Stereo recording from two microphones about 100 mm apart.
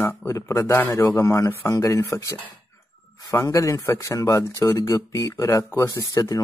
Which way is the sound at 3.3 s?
30° left (ahead or behind).